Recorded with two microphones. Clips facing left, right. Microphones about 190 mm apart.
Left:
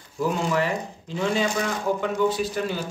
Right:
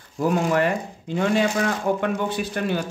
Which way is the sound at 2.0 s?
60° right (ahead or behind).